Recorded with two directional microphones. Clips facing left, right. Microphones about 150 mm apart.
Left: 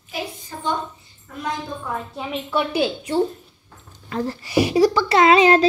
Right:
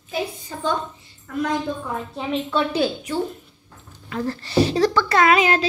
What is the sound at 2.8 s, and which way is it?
Speech, 30° left (ahead or behind).